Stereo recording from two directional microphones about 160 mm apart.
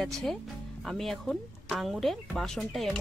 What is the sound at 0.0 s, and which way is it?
Speech, centre (ahead or behind).